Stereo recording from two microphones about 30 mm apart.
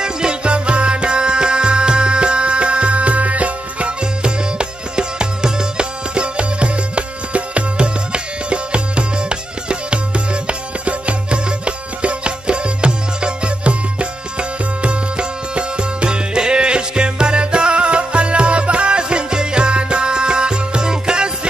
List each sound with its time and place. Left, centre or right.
0.0 s music: right
4.0 s music: right